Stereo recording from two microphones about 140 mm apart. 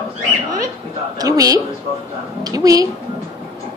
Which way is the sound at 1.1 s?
25° right (ahead or behind).